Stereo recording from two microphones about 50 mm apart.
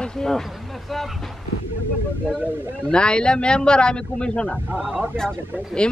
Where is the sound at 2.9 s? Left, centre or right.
Centre.